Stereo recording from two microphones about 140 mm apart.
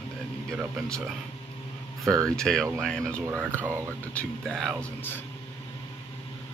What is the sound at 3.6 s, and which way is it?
Speech, 20° right (ahead or behind).